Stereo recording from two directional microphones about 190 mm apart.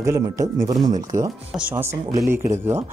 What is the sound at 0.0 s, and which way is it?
Speech, 15° right (ahead or behind).